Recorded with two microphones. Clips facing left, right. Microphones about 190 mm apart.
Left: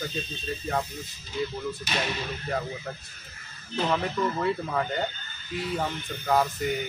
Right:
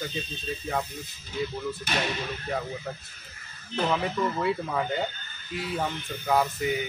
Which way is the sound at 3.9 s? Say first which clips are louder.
Left 1 dB; 5° right (ahead or behind).